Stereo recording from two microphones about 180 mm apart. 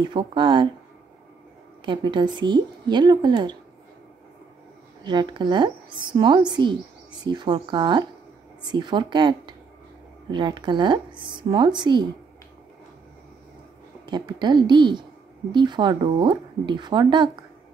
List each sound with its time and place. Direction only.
0.1 s speech: 25° right (ahead or behind)
1.9 s speech: 25° right (ahead or behind)
5.0 s speech: 25° right (ahead or behind)
14.0 s speech: 25° right (ahead or behind)